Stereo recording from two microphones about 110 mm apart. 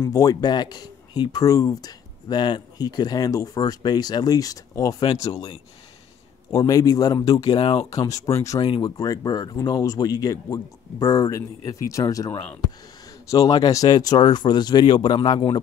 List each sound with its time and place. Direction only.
0.0 s speech: 35° left (ahead or behind)
6.5 s speech: 35° left (ahead or behind)
7.5 s speech: 50° left (ahead or behind)
7.9 s speech: 30° left (ahead or behind)
8.5 s speech: 50° left (ahead or behind)
8.9 s speech: 35° left (ahead or behind)
13.3 s speech: 35° left (ahead or behind)